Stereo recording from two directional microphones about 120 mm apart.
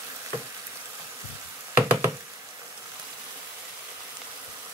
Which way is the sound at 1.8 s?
20° right (ahead or behind).